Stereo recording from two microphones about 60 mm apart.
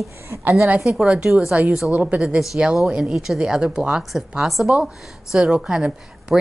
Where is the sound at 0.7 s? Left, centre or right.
Centre.